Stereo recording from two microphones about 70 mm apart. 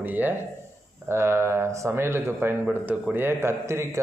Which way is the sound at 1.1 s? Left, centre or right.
Right.